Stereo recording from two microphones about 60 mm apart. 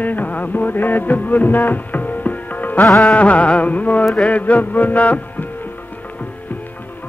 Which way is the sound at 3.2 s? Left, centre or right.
Left.